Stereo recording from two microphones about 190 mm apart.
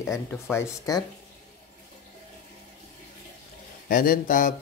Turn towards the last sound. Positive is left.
turn(degrees=45)  # may be behind; listen again after turning